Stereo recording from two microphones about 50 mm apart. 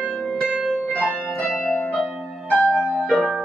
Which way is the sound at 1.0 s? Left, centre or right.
Left.